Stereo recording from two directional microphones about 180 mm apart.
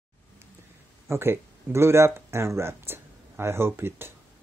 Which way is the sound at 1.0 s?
15° right (ahead or behind).